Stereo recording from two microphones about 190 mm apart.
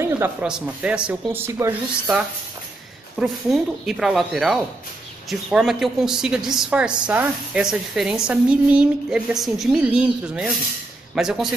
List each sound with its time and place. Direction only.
0.0 s a woman's voice: 10° right (ahead or behind)